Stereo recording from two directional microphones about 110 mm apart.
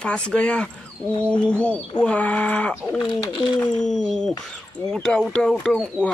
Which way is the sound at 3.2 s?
45° left (ahead or behind).